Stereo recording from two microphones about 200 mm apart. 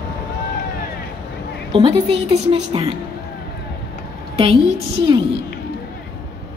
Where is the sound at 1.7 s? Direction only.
25° right (ahead or behind).